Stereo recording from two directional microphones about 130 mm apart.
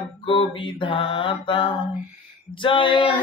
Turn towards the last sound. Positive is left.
turn(degrees=40)  # may be behind; listen again after turning